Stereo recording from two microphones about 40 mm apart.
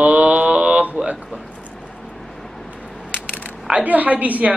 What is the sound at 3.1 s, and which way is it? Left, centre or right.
Mechanisms, left.